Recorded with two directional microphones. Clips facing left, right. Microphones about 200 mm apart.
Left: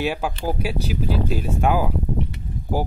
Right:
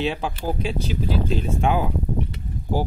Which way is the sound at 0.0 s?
10° left (ahead or behind).